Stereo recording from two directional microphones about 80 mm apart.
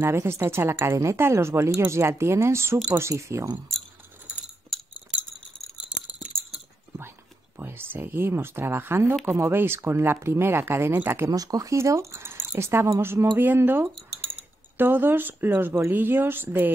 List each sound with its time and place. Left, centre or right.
0.0 s speech: right
4.3 s glass: centre
4.7 s chink: centre
5.9 s rattle: centre
7.5 s speech: right
11.2 s speech: right